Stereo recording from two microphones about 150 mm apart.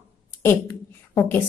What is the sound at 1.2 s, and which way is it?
Speech, 15° left (ahead or behind).